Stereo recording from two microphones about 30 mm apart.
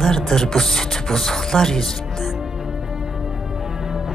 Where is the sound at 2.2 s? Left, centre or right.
Centre.